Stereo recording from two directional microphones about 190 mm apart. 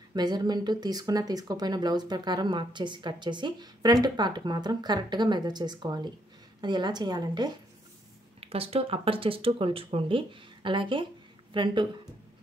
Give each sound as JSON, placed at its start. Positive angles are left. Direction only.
{"t": 0.1, "sound": "speech", "side_deg": -20}